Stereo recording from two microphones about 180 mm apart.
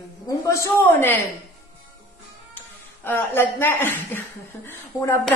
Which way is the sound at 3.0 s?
10° left (ahead or behind).